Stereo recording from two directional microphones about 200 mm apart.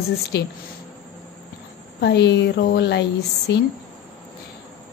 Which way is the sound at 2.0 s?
60° left (ahead or behind).